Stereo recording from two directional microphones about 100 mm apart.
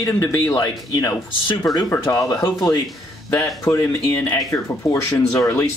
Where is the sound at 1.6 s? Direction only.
Centre (ahead or behind).